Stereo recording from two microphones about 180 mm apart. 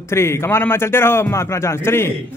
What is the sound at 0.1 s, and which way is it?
Speech, 15° left (ahead or behind).